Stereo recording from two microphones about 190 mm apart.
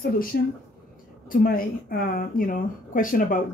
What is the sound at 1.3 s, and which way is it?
Speech, 50° left (ahead or behind).